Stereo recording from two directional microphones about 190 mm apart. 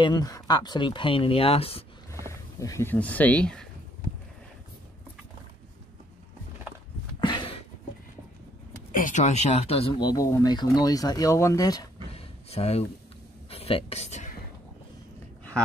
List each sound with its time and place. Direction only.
0.0 s speech: 20° left (ahead or behind)
2.2 s speech: 15° left (ahead or behind)
7.2 s a sound: 25° left (ahead or behind)
8.9 s speech: 40° left (ahead or behind); by 11.9 s 20° left (ahead or behind)
12.1 s a sound: 30° left (ahead or behind)
13.5 s speech: 30° left (ahead or behind)